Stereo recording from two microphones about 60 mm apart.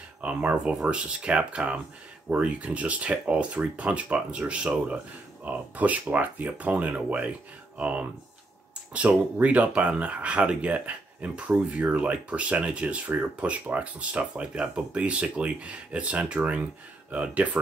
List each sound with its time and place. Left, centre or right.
0.2 s speech: right